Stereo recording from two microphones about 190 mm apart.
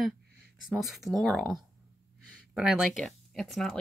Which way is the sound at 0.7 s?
Centre (ahead or behind).